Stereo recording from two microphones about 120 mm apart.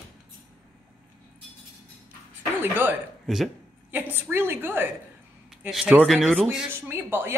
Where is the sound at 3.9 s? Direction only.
15° right (ahead or behind).